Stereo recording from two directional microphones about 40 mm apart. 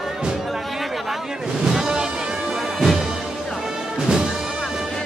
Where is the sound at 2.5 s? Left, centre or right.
Centre.